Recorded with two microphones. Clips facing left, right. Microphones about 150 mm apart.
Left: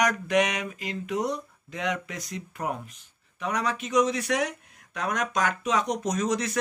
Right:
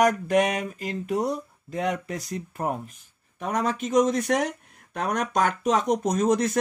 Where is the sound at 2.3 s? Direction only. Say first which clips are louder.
Right 2 dB; 40° right (ahead or behind).